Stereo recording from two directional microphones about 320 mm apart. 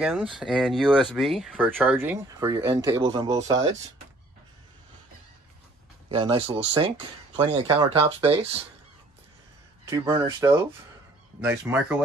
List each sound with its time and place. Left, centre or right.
0.0 s speech: centre
6.0 s speech: centre
9.8 s speech: centre
11.7 s speech: centre